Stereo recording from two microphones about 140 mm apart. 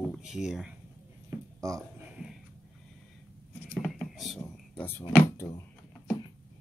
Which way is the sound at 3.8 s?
5° left (ahead or behind).